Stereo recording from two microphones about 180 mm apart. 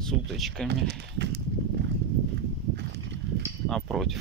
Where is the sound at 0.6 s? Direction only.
70° right (ahead or behind).